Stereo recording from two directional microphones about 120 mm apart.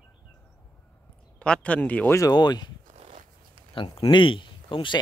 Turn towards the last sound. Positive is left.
turn(degrees=45)  # may be behind; listen again after turning